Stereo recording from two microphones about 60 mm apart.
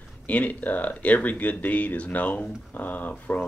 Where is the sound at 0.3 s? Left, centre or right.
Left.